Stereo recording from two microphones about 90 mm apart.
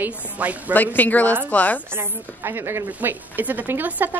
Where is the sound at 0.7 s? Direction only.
20° left (ahead or behind).